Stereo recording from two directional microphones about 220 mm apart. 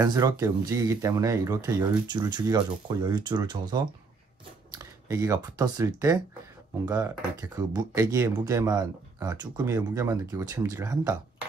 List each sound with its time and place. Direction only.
0.0 s speech: 15° right (ahead or behind)